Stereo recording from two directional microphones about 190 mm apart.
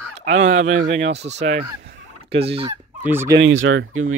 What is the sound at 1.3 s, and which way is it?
Honk, 35° right (ahead or behind).